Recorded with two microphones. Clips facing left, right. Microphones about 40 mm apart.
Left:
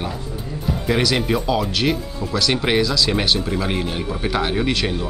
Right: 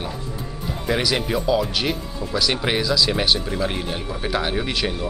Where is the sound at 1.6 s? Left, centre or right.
Centre.